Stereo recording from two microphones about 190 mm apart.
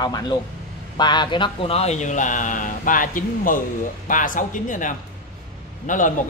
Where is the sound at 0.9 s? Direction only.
25° left (ahead or behind).